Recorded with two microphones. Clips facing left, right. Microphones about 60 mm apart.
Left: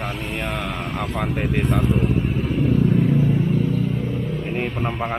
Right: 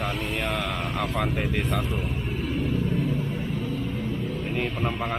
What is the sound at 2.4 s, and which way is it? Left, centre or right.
Vehicle, left.